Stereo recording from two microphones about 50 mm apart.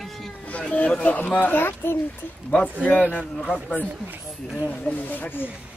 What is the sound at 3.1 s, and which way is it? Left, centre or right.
Speech, left.